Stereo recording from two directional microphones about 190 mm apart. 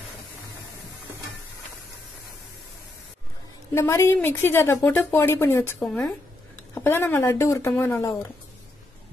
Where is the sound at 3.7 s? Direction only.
15° left (ahead or behind).